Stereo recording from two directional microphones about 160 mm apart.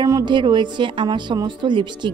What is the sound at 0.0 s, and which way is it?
A woman's voice, 25° right (ahead or behind).